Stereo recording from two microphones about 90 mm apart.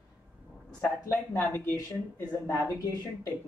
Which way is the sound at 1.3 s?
20° left (ahead or behind).